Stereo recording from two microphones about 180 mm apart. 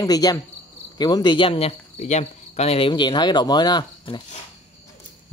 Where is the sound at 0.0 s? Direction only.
20° left (ahead or behind).